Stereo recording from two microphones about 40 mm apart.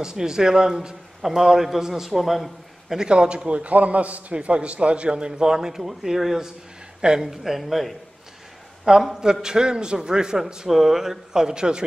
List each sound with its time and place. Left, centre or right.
0.0 s a man's voice: centre
3.1 s a man's voice: right; by 7.9 s centre
9.0 s a man's voice: centre